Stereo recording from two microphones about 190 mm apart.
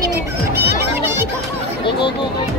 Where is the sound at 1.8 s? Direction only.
25° left (ahead or behind).